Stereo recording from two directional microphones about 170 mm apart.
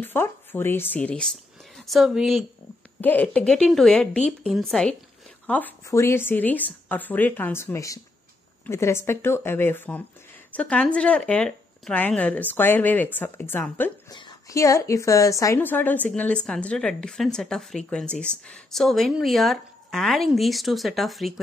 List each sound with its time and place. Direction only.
0.0 s speech: 10° left (ahead or behind)
3.0 s speech: 10° left (ahead or behind)